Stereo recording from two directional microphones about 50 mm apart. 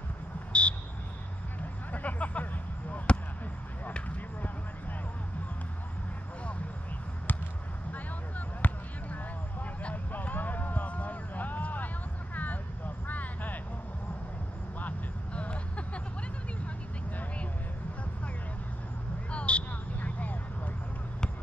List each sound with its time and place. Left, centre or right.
0.5 s buzzer: left
1.6 s a sound: left
3.8 s basketball bounce: left
8.6 s basketball bounce: left
12.4 s vehicle: left
14.8 s vehicle: left
19.3 s vehicle: left